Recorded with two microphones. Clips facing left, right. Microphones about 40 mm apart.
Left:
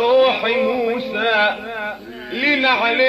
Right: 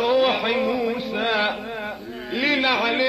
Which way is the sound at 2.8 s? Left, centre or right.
Left.